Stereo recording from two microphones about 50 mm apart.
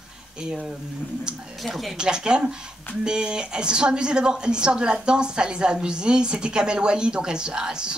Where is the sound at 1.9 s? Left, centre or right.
Centre.